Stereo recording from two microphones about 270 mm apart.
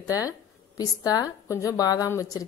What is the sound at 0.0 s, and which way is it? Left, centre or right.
A woman's voice, centre.